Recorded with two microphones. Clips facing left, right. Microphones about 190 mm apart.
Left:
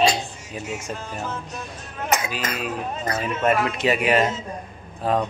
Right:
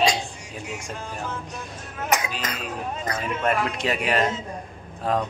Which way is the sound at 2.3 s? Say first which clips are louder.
Left 4 dB; 5° left (ahead or behind).